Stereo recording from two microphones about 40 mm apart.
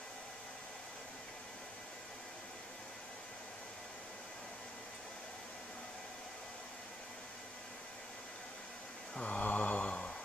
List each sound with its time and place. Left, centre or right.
9.2 s mantra: left